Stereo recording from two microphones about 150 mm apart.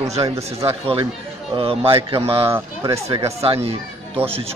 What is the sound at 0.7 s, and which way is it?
Speech, 35° right (ahead or behind).